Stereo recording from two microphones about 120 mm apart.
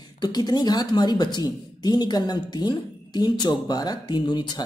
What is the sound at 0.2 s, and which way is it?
Speech, 35° left (ahead or behind).